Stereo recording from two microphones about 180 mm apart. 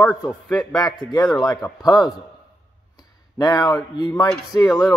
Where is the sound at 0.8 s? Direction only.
25° left (ahead or behind).